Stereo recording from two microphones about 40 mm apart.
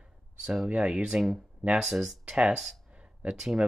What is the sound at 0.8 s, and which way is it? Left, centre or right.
Speech, right.